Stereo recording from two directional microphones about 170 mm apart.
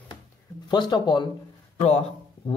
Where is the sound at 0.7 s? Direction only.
25° left (ahead or behind).